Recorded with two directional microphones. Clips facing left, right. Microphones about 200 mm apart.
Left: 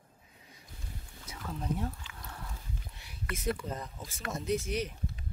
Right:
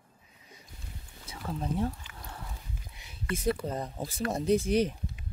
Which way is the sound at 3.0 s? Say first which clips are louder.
Right 7 dB; 25° right (ahead or behind).